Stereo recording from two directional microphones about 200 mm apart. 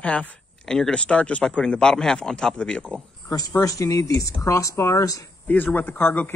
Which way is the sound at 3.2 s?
15° left (ahead or behind).